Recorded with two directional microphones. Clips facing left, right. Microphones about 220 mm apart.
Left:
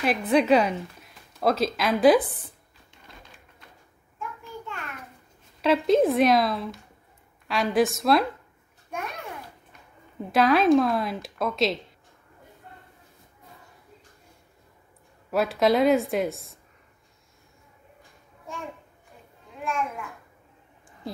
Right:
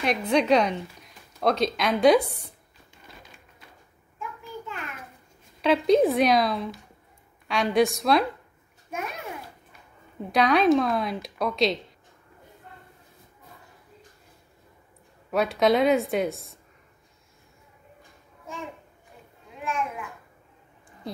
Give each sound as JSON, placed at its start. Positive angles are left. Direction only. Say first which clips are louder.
{"t": 0.0, "sound": "a woman's voice", "louder": "left 1 dB", "side_deg": 5}
{"t": 4.2, "sound": "child singing", "louder": "even", "side_deg": 0}
{"t": 5.6, "sound": "a woman's voice", "louder": "right 1 dB", "side_deg": 0}
{"t": 8.9, "sound": "babbling", "louder": "right 1 dB", "side_deg": -5}
{"t": 10.3, "sound": "a woman's voice", "louder": "left 1 dB", "side_deg": 0}
{"t": 15.3, "sound": "a woman's voice", "louder": "even", "side_deg": 0}
{"t": 19.6, "sound": "a child's voice", "louder": "left 1 dB", "side_deg": 0}